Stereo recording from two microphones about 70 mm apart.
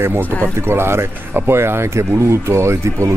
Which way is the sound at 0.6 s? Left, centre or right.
Right.